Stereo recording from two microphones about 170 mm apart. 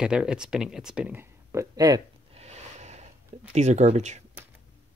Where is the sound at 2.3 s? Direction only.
40° right (ahead or behind).